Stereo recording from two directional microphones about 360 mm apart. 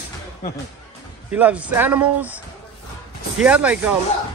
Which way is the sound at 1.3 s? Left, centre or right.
Centre.